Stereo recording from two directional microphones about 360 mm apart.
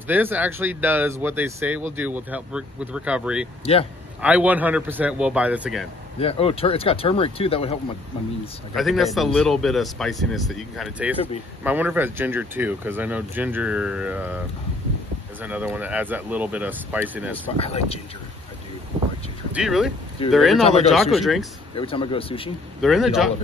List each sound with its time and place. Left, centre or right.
0.1 s speech: centre
6.1 s speech: centre
8.7 s speech: centre
15.4 s speech: centre
17.6 s speech: centre
19.5 s speech: centre
21.7 s speech: centre
22.8 s speech: centre